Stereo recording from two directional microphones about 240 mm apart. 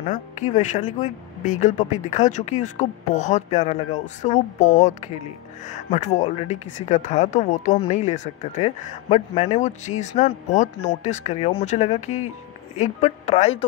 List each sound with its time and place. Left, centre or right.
0.0 s a woman's voice: left